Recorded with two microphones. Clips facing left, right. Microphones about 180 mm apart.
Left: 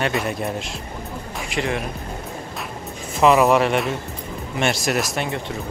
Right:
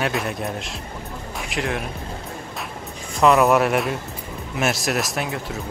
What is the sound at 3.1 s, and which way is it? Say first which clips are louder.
A man's voice: left 1 dB; centre (ahead or behind).